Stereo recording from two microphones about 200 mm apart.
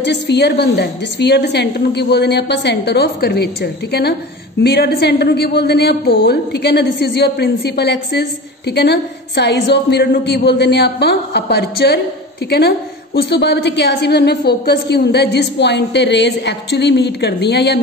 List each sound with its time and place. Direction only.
0.0 s a woman's voice: 60° left (ahead or behind)